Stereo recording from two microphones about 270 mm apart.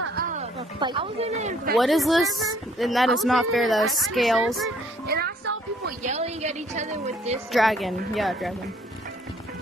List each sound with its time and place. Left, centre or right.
0.1 s a sound: right
0.7 s speech: centre
1.8 s speech: centre
4.6 s music: right
7.5 s speech: centre